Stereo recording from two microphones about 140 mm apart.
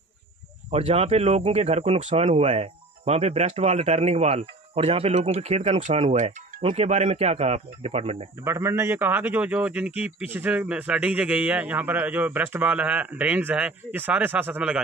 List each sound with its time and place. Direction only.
0.7 s speech: 50° right (ahead or behind)
8.5 s a man's voice: 20° right (ahead or behind)